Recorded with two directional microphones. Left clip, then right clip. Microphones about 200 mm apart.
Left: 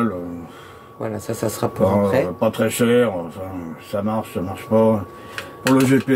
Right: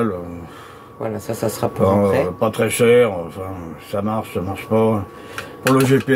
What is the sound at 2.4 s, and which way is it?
Speech, 35° right (ahead or behind).